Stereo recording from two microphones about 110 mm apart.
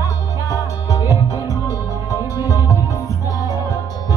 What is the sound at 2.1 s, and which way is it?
Music, 35° left (ahead or behind).